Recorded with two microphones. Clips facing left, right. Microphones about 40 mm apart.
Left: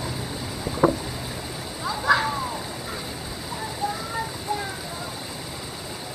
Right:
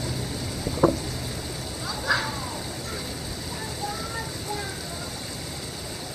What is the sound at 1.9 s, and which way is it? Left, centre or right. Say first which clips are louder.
Vehicle: left 5 dB; centre.